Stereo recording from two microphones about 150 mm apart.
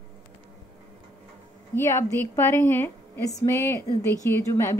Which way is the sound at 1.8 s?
20° left (ahead or behind).